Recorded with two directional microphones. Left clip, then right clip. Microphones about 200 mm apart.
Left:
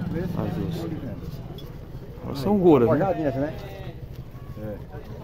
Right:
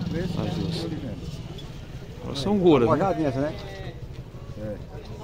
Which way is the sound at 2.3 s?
10° left (ahead or behind).